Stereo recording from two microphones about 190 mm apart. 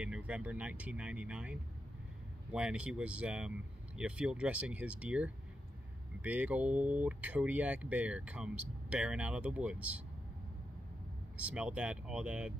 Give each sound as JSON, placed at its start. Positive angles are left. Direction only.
{"t": 0.0, "sound": "speech", "side_deg": -5}
{"t": 11.3, "sound": "speech", "side_deg": -5}